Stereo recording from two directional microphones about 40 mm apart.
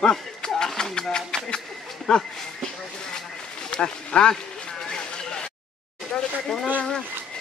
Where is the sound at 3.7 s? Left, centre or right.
Left.